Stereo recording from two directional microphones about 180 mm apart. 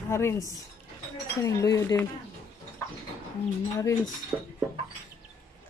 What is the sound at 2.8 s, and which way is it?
Bird, 15° left (ahead or behind).